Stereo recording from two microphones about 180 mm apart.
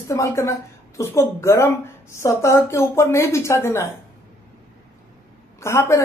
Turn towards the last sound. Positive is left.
turn(degrees=15)  # may be behind; listen again after turning